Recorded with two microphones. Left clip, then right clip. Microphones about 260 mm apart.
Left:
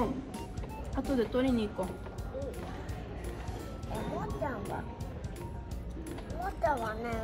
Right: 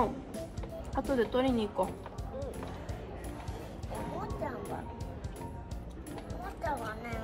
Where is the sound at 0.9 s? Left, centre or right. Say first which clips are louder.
Right 1 dB; right.